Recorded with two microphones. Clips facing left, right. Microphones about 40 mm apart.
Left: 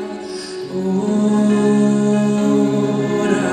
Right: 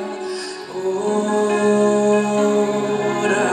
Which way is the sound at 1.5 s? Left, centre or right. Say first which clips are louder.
Left 1 dB; centre.